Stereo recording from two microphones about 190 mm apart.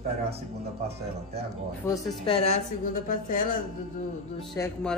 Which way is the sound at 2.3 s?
30° left (ahead or behind).